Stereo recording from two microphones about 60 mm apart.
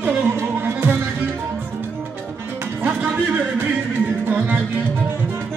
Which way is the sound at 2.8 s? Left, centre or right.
Right.